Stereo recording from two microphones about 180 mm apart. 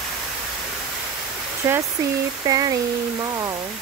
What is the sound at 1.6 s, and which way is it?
Speech, 15° right (ahead or behind).